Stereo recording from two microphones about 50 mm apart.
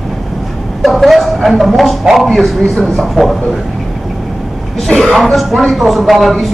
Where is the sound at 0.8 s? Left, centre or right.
Centre.